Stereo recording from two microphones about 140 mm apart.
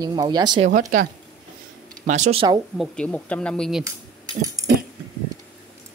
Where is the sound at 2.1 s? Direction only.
60° right (ahead or behind).